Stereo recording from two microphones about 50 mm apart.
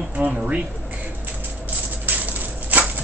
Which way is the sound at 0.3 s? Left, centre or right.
Centre.